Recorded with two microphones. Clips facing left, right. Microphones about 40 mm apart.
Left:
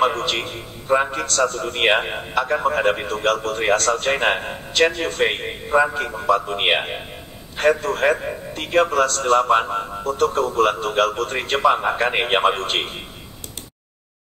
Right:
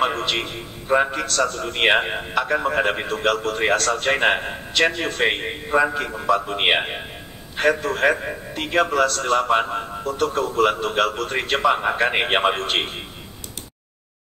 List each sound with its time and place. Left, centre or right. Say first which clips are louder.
0.0 s a man's voice: left 2 dB; centre
10.1 s a man's voice: left 2 dB; centre